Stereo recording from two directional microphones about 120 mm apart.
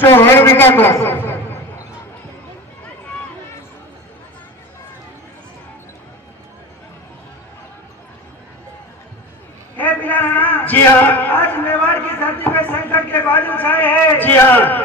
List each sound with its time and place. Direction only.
0.0 s a man's voice: 20° left (ahead or behind)
9.8 s a man's voice: 15° left (ahead or behind)